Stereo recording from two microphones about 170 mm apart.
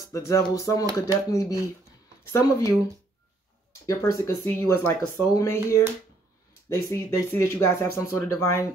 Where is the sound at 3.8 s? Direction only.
20° left (ahead or behind).